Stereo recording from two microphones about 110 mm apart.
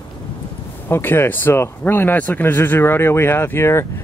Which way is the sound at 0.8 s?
20° left (ahead or behind).